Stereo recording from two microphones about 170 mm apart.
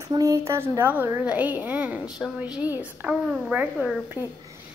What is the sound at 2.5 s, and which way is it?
Speech, 10° right (ahead or behind).